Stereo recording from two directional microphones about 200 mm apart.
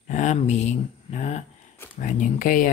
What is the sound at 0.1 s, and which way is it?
Speech, 35° left (ahead or behind).